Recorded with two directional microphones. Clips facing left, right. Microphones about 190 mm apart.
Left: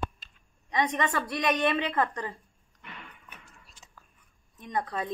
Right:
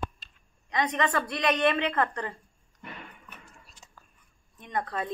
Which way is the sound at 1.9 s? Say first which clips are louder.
Even; 15° left (ahead or behind).